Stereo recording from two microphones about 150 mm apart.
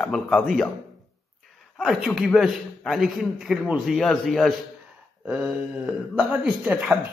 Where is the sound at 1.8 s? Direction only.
Centre (ahead or behind).